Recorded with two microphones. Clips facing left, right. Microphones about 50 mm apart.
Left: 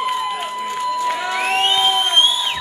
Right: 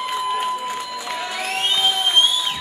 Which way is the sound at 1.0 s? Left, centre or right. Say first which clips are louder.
Left 6 dB; centre.